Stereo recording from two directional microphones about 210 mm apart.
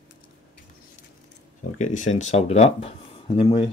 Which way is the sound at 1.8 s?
35° left (ahead or behind).